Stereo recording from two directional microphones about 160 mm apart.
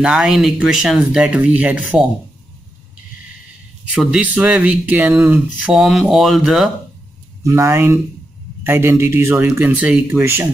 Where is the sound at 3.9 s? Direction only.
5° right (ahead or behind).